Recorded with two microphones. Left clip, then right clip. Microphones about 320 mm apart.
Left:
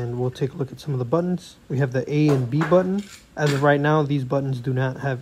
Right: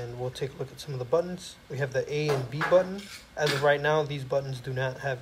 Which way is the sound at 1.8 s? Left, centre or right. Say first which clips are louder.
Left 6 dB; centre.